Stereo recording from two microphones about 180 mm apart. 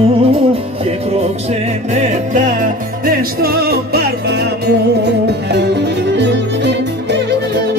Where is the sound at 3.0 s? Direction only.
60° right (ahead or behind).